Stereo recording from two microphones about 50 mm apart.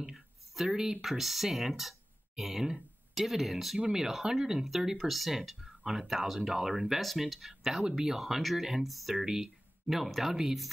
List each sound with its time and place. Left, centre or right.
0.0 s speech: centre